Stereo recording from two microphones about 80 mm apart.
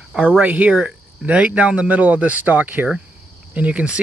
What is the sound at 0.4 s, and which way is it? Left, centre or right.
Speech, centre.